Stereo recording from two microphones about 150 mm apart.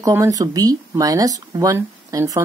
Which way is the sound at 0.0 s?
20° right (ahead or behind).